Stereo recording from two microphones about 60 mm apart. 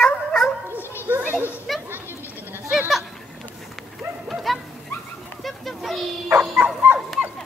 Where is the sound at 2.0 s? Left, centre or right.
Left.